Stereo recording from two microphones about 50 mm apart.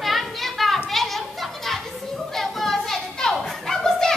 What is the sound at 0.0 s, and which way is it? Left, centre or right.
Children playing, centre.